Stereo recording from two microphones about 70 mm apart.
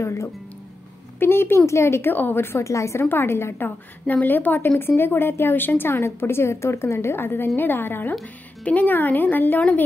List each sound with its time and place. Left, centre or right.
0.0 s a woman's voice: left
2.6 s a woman's voice: left